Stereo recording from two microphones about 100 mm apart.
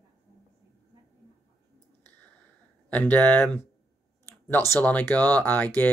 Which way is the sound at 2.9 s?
15° left (ahead or behind).